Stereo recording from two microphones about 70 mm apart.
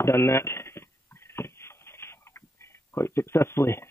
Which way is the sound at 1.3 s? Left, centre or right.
Left.